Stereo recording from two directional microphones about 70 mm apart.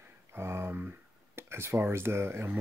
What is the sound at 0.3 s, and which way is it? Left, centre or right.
Speech, right.